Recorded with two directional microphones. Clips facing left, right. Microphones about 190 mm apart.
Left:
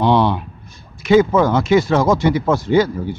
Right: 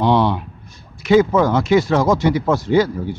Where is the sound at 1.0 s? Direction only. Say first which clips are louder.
Left 1 dB; 25° left (ahead or behind).